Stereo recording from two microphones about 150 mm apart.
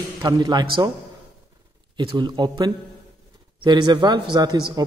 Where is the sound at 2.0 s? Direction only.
30° right (ahead or behind).